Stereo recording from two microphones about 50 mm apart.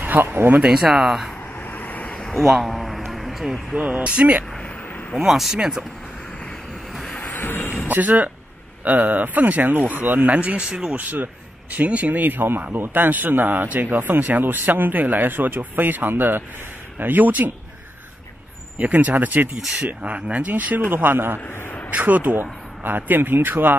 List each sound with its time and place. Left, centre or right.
0.0 s speech: right
0.7 s speech: centre
1.7 s vehicle: left
2.3 s a sound: centre
3.7 s speech: right
5.1 s speech: centre
7.3 s a sound: left
7.9 s speech: right; by 11.0 s centre
11.0 s speech: right
18.8 s speech: right
19.5 s speech: centre
20.0 s speech: right
20.9 s speech: right
21.9 s speech: right